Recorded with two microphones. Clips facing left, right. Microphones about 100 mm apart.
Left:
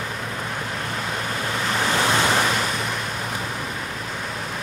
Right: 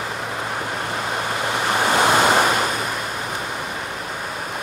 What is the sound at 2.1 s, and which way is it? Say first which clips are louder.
Waves: right 4 dB; 50° right (ahead or behind).